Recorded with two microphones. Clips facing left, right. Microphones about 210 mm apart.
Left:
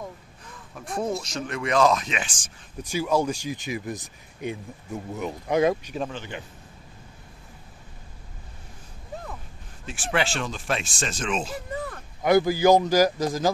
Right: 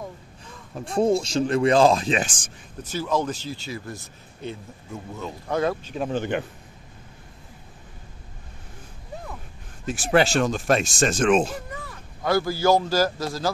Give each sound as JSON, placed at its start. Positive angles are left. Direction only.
{"t": 0.7, "sound": "speech", "side_deg": -30}
{"t": 2.2, "sound": "speech", "side_deg": -55}
{"t": 2.8, "sound": "speech", "side_deg": 10}
{"t": 6.1, "sound": "speech", "side_deg": -55}
{"t": 9.8, "sound": "speech", "side_deg": -40}
{"t": 12.2, "sound": "speech", "side_deg": 20}